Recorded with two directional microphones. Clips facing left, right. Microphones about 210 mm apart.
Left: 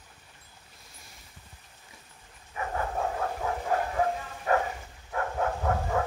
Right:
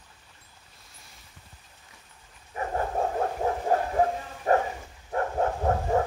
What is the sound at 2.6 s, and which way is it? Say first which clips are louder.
Bow-wow: right 3 dB; 40° right (ahead or behind).